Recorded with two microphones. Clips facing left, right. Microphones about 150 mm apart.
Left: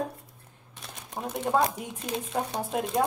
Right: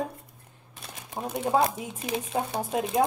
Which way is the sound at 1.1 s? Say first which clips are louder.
Right 1 dB; 5° right (ahead or behind).